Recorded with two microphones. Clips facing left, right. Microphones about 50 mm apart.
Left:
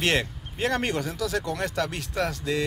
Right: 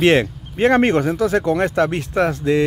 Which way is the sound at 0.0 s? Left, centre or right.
Right.